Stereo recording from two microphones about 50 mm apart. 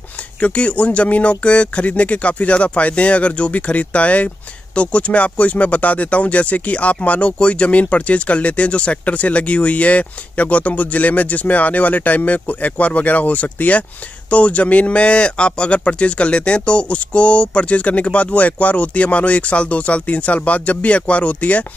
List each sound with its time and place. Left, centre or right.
0.4 s speech: left